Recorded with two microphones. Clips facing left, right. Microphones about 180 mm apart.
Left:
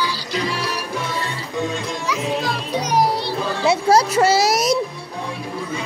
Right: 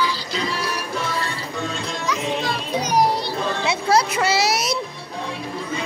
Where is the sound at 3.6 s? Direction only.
40° left (ahead or behind).